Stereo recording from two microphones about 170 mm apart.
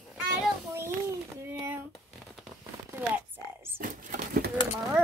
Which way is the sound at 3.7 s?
55° right (ahead or behind).